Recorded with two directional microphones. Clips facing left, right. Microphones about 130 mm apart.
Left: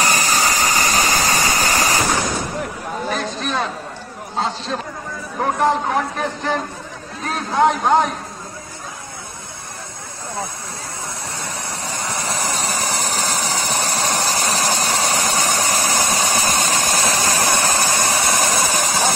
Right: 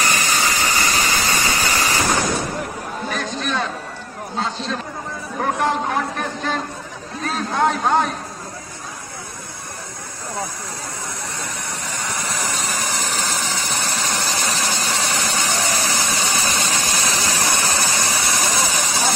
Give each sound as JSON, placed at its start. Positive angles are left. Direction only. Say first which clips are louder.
{"t": 0.0, "sound": "vehicle", "louder": "left 2 dB", "side_deg": 40}
{"t": 3.1, "sound": "chatter", "louder": "left 1 dB", "side_deg": 30}
{"t": 5.4, "sound": "a man's voice", "louder": "left 3 dB", "side_deg": 15}
{"t": 12.3, "sound": "vehicle", "louder": "left 4 dB", "side_deg": 35}